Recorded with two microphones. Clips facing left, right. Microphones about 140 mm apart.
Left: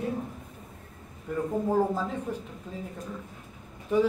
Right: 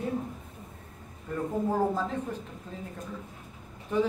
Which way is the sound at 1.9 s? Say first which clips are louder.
Even; 10° left (ahead or behind).